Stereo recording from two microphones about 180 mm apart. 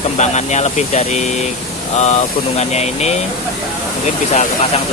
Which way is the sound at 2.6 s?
35° left (ahead or behind).